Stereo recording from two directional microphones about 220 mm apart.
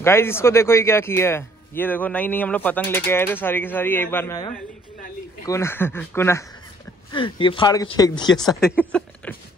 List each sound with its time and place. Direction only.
0.0 s speech: 10° left (ahead or behind)
5.4 s speech: 15° left (ahead or behind)
7.1 s speech: 20° left (ahead or behind)
8.6 s speech: centre (ahead or behind)